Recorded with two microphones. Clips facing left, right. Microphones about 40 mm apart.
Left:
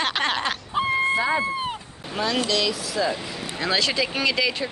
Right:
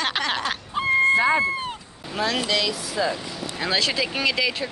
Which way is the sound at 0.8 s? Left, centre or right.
Centre.